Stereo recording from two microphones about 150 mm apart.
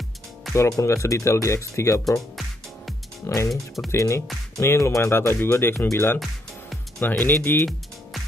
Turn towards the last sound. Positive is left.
turn(degrees=15)  # may be behind; listen again after turning